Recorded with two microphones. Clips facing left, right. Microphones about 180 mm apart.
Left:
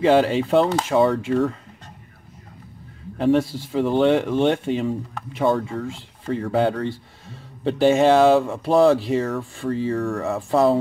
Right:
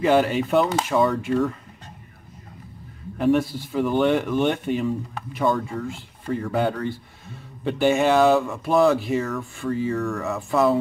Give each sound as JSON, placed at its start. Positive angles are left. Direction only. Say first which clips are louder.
{"t": 0.0, "sound": "speech", "louder": "left 2 dB", "side_deg": 30}
{"t": 3.2, "sound": "speech", "louder": "left 1 dB", "side_deg": 30}